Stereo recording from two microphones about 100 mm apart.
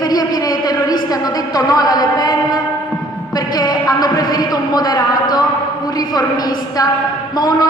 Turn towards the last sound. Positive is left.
turn(degrees=40)  # may be behind; listen again after turning